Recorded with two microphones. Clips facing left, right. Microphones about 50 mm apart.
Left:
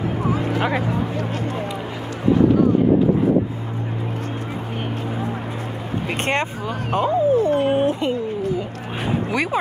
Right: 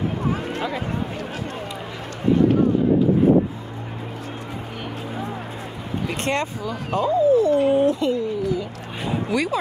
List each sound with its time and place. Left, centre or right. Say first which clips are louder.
0.3 s a sound: left 4 dB; left
6.0 s speech: left 2 dB; left
7.8 s speech: right 1 dB; left
8.4 s cat: left 1 dB; left
9.3 s speech: right 1 dB; left